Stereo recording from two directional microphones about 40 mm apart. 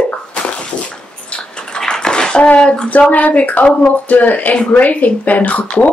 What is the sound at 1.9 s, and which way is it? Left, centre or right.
Bathtub, centre.